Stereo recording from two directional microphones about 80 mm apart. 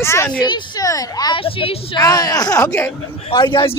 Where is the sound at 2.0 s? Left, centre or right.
Left.